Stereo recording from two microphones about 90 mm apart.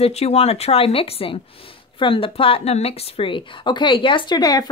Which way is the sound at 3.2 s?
70° left (ahead or behind).